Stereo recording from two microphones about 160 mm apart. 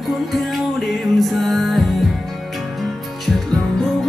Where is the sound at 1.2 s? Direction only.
Centre (ahead or behind).